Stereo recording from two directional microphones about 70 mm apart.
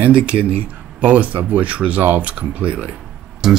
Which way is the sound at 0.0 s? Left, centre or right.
Centre.